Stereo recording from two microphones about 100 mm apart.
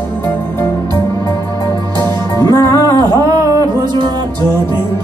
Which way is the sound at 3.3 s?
40° right (ahead or behind).